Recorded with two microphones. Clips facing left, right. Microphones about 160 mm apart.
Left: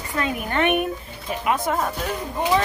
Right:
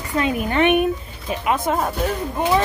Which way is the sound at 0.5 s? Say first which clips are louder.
Right 4 dB; 20° right (ahead or behind).